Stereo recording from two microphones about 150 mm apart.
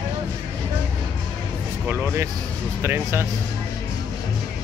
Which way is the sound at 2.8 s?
15° right (ahead or behind).